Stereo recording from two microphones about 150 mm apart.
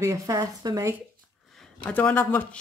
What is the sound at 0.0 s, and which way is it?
Speech, 20° right (ahead or behind).